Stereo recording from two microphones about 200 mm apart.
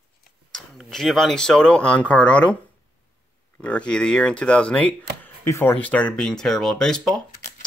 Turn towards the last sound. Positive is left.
turn(degrees=5)  # may be behind; listen again after turning